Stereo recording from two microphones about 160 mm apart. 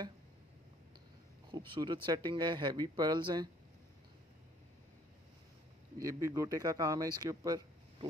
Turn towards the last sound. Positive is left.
turn(degrees=-20)  # may be behind; listen again after turning